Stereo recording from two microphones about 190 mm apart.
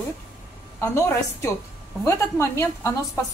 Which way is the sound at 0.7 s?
15° left (ahead or behind).